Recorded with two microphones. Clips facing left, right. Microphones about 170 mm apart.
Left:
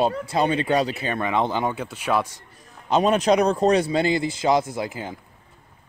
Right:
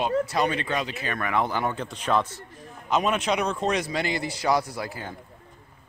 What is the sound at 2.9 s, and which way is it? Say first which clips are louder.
A man's voice: left 6 dB; 35° left (ahead or behind).